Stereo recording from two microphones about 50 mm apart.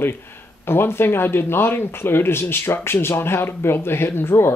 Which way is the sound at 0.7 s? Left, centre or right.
Left.